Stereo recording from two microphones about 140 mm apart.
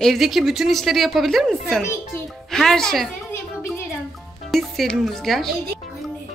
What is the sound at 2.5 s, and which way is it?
Speech, 5° left (ahead or behind).